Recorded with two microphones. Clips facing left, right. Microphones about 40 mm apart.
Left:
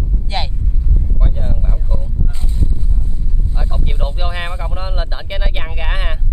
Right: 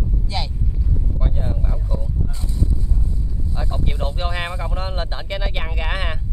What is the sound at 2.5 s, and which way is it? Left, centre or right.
Wind noise, left.